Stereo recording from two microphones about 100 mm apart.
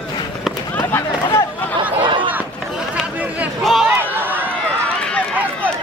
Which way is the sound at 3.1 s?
15° right (ahead or behind).